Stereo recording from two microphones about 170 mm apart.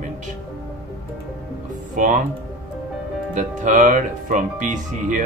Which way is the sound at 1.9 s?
45° right (ahead or behind).